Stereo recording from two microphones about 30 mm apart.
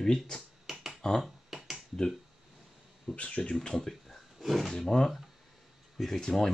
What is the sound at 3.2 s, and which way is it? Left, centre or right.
Speech, left.